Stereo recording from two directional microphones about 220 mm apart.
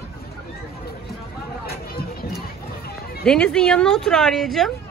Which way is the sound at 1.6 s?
45° left (ahead or behind).